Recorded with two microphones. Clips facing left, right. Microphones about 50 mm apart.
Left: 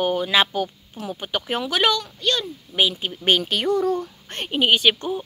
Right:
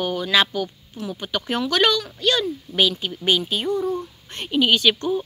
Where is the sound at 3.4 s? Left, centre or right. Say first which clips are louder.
Left 2 dB; left.